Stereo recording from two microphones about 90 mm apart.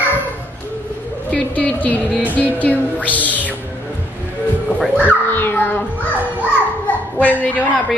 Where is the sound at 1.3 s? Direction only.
15° left (ahead or behind).